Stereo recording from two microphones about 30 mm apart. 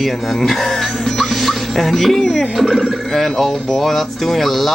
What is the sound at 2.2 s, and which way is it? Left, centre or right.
Speech, left.